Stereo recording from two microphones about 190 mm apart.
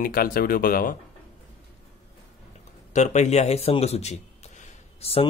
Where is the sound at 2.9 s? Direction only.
35° left (ahead or behind).